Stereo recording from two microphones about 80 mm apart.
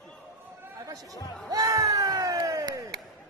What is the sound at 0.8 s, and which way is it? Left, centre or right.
Speech, right.